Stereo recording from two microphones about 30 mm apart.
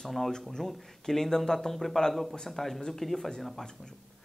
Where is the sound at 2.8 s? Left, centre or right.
Centre.